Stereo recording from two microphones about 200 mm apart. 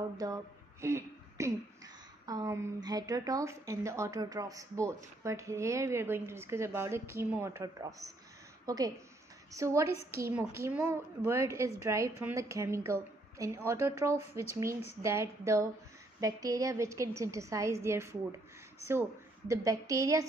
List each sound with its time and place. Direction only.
0.2 s a woman's voice: 15° right (ahead or behind)